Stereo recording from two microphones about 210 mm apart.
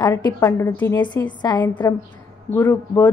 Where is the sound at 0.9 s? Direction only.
20° left (ahead or behind).